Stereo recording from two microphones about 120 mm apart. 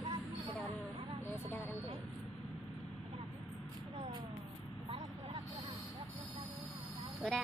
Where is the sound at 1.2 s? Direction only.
20° left (ahead or behind).